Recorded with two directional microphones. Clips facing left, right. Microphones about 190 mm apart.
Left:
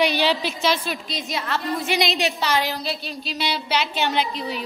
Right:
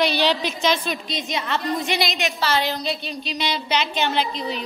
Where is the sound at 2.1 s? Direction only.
35° left (ahead or behind).